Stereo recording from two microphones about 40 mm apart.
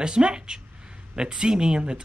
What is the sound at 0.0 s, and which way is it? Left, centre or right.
Speech, right.